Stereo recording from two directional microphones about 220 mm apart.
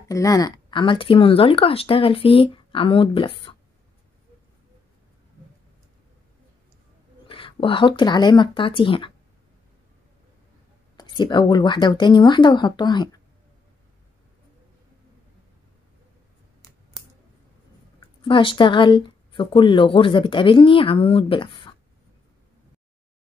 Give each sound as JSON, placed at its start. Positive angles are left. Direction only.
{"t": 0.1, "sound": "speech", "side_deg": 15}
{"t": 7.2, "sound": "speech", "side_deg": 25}
{"t": 11.0, "sound": "speech", "side_deg": 20}
{"t": 18.2, "sound": "speech", "side_deg": 25}